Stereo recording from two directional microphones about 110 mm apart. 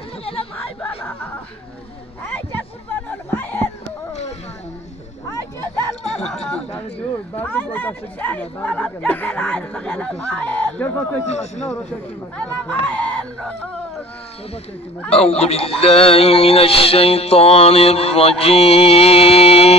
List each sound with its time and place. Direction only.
0.2 s chatter: 60° left (ahead or behind)
0.7 s a sound: 20° left (ahead or behind)
6.0 s a sound: 85° left
7.0 s speech: 15° left (ahead or behind)
11.2 s speech: 85° left
12.4 s speech: 10° left (ahead or behind)
15.0 s a man's voice: 65° left (ahead or behind)